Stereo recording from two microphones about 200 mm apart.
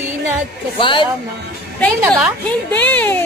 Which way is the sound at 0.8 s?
25° left (ahead or behind).